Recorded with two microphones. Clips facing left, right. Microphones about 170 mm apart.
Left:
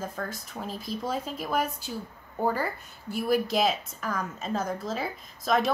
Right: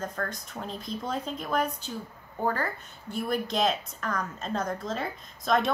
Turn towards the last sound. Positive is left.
turn(degrees=5)  # may be behind; listen again after turning